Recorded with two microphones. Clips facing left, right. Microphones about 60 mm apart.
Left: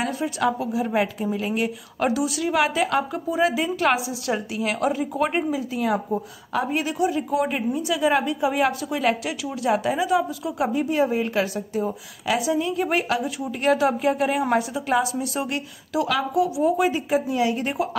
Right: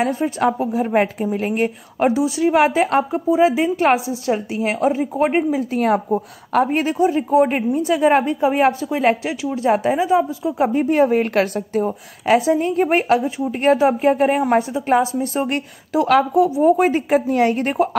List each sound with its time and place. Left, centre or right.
0.0 s a woman's voice: right
2.0 s speech: right
5.6 s a woman's voice: right